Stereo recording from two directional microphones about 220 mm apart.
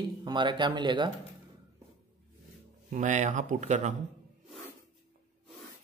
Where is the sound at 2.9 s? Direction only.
35° right (ahead or behind).